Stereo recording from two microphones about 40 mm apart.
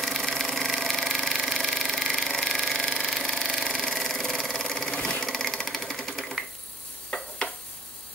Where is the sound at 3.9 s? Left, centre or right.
Centre.